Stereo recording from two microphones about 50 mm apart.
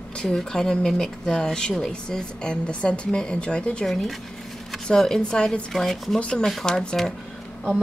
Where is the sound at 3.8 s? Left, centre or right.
Centre.